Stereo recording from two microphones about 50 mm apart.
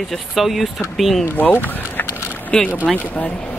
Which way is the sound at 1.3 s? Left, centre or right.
Left.